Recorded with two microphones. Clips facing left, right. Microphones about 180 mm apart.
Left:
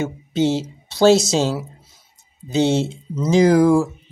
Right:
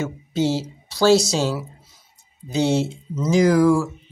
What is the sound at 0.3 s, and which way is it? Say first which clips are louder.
Speech: left 2 dB; 20° left (ahead or behind).